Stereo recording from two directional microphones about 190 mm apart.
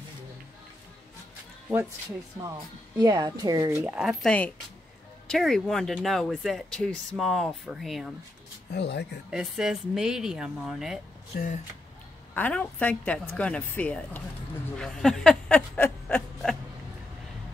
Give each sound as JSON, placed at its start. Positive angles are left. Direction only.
{"t": 1.7, "sound": "speech", "side_deg": -15}
{"t": 8.7, "sound": "speech", "side_deg": 60}
{"t": 9.3, "sound": "speech", "side_deg": -5}
{"t": 11.3, "sound": "speech", "side_deg": 45}
{"t": 12.4, "sound": "speech", "side_deg": 10}
{"t": 14.8, "sound": "a sound", "side_deg": 0}